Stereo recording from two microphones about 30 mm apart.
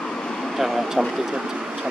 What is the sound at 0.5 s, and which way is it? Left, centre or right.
Vehicle, centre.